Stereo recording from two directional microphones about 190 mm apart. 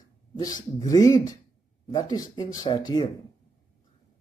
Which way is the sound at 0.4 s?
20° left (ahead or behind).